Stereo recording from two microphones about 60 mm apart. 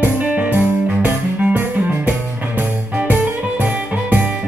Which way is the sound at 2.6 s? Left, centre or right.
Right.